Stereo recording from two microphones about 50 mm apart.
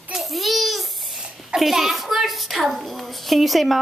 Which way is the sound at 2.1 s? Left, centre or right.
Centre.